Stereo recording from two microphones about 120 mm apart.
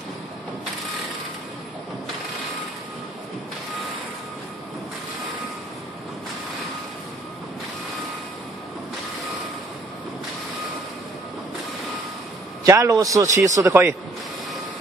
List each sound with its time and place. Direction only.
12.6 s a man's voice: 25° right (ahead or behind)